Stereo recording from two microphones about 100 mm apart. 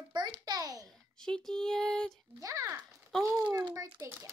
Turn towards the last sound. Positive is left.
turn(degrees=-30)  # may be behind; listen again after turning